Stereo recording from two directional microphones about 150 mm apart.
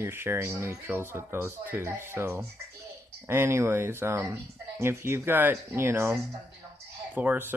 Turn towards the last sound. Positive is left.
turn(degrees=-15)  # may be behind; listen again after turning